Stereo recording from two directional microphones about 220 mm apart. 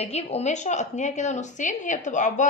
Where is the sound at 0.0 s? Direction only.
30° left (ahead or behind).